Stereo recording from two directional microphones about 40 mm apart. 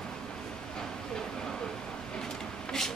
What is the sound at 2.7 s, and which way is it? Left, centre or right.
Vehicle, centre.